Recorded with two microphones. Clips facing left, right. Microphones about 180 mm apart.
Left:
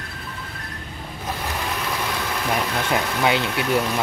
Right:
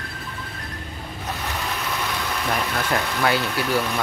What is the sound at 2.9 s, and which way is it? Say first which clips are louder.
Speech: left 1 dB; 20° left (ahead or behind).